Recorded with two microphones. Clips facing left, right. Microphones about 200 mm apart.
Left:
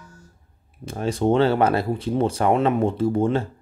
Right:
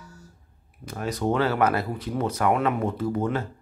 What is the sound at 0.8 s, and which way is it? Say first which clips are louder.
Speech: left 5 dB; 25° left (ahead or behind).